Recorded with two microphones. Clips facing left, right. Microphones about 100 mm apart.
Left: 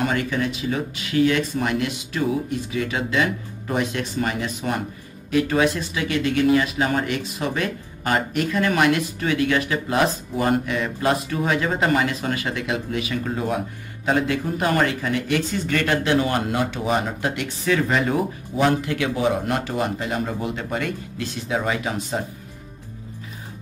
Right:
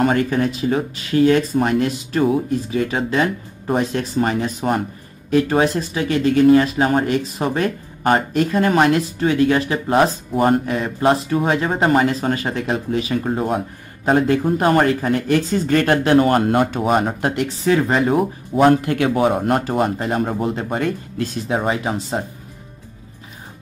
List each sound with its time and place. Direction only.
0.0 s speech: 40° right (ahead or behind)